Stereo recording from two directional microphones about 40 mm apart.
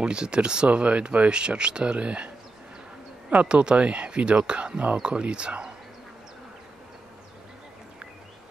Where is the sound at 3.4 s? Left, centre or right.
Right.